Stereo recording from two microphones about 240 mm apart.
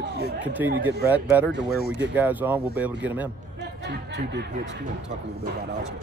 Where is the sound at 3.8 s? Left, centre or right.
Right.